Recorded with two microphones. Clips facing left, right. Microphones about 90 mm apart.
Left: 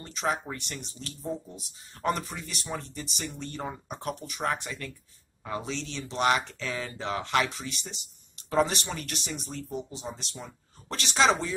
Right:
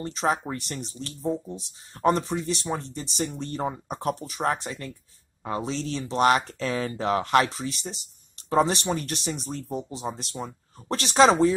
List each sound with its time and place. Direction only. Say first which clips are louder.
0.0 s speech: right 5 dB; 35° right (ahead or behind)